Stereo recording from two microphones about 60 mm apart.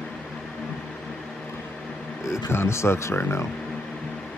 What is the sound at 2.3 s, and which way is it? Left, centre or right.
Speech, left.